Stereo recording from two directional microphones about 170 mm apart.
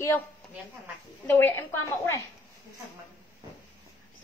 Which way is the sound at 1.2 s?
10° left (ahead or behind).